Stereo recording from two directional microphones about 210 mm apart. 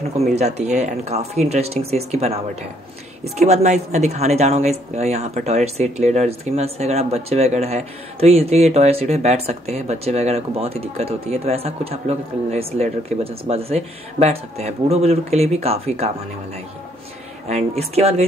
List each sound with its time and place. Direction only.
0.3 s a woman's voice: 30° right (ahead or behind)
17.5 s a woman's voice: 30° right (ahead or behind)